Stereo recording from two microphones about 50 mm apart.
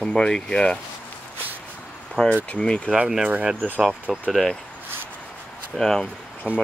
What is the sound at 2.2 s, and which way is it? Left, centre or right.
Speech, centre.